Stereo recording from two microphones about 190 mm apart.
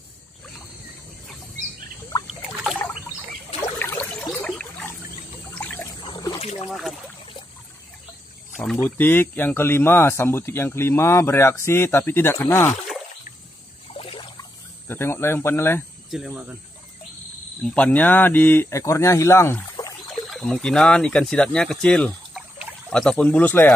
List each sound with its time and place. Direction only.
2.2 s rowboat: centre (ahead or behind)
3.8 s a sound: 10° left (ahead or behind)
5.5 s trickle: 10° left (ahead or behind)
6.0 s a sound: 20° left (ahead or behind)
6.4 s a sound: 35° left (ahead or behind)
6.7 s speech: centre (ahead or behind)
8.7 s speech: 10° left (ahead or behind)
13.9 s trickle: 30° left (ahead or behind)
14.9 s speech: 10° left (ahead or behind)
16.1 s speech: 5° right (ahead or behind)
17.6 s speech: 5° left (ahead or behind)
20.1 s speech: centre (ahead or behind)